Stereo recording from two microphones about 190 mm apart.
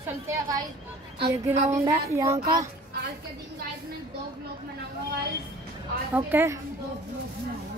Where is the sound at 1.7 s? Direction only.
20° right (ahead or behind).